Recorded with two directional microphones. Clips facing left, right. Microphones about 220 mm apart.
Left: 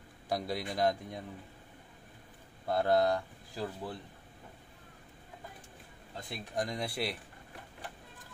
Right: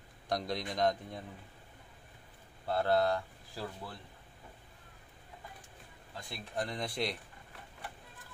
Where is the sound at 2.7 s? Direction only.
15° left (ahead or behind).